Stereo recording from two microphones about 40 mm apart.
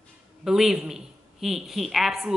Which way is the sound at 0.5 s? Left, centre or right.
Centre.